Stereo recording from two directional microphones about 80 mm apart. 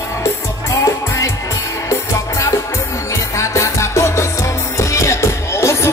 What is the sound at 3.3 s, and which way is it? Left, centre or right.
Music, left.